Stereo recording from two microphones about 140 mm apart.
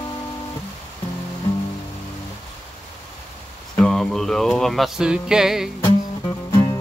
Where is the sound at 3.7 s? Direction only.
5° left (ahead or behind).